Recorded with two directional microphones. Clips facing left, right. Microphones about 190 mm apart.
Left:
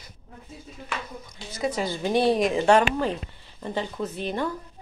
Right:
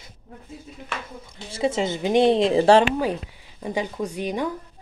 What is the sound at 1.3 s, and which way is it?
Speech, 25° right (ahead or behind).